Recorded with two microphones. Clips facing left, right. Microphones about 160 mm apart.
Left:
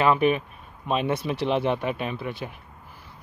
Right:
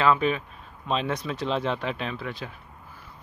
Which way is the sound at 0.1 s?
20° left (ahead or behind).